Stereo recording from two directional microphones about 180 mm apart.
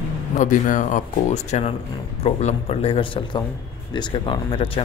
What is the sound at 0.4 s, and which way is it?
A man's voice, 45° left (ahead or behind).